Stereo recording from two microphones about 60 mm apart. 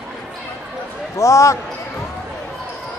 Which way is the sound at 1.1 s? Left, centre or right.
Left.